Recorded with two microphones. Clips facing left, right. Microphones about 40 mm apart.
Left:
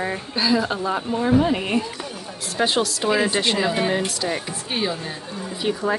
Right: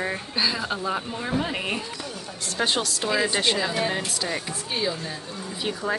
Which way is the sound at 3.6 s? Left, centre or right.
Left.